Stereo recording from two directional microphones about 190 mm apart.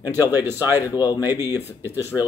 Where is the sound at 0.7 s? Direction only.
20° left (ahead or behind).